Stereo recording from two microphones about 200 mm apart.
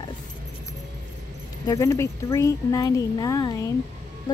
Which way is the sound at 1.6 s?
15° left (ahead or behind).